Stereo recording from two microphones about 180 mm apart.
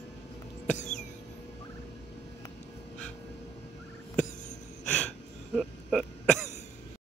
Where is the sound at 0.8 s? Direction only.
40° left (ahead or behind).